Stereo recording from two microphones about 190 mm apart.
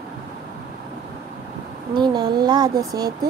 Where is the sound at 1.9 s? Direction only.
20° right (ahead or behind).